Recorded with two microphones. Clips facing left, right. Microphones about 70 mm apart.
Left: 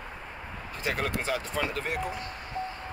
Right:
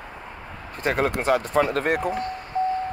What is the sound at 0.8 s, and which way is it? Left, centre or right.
Speech, right.